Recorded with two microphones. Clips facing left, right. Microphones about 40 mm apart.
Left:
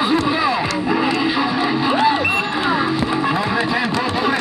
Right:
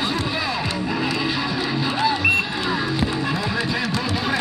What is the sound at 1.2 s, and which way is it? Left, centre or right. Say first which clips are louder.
Vehicle: left 5 dB; centre.